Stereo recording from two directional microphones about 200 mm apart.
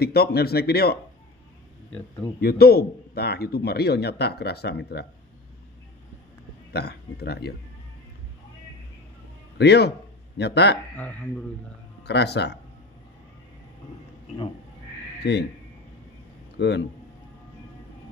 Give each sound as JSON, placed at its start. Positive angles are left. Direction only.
{"t": 0.0, "sound": "speech", "side_deg": 50}
{"t": 2.4, "sound": "speech", "side_deg": 50}
{"t": 6.7, "sound": "speech", "side_deg": 55}
{"t": 9.6, "sound": "a man's voice", "side_deg": 55}
{"t": 12.0, "sound": "speech", "side_deg": 55}
{"t": 15.2, "sound": "a man's voice", "side_deg": 55}
{"t": 16.5, "sound": "a man's voice", "side_deg": 60}